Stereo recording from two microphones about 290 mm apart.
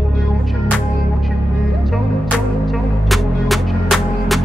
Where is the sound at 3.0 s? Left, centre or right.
Centre.